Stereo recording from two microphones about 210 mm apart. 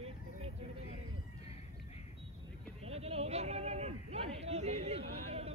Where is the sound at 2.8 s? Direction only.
30° right (ahead or behind).